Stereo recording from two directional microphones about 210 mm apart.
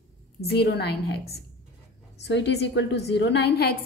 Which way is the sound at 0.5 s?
50° left (ahead or behind).